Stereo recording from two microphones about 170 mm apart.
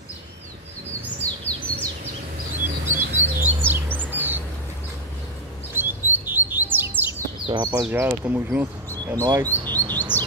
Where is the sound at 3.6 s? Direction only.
10° right (ahead or behind).